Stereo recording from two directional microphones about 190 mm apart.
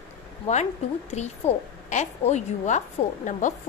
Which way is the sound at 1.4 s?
35° left (ahead or behind).